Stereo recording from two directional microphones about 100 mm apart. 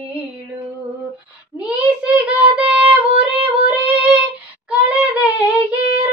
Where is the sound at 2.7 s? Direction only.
15° right (ahead or behind).